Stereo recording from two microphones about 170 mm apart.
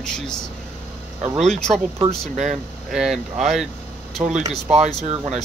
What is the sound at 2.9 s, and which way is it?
Speech, centre (ahead or behind).